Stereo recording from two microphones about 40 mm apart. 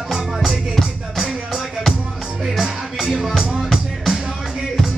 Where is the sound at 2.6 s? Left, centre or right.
Centre.